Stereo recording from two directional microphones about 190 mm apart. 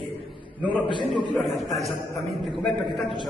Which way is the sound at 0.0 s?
Centre (ahead or behind).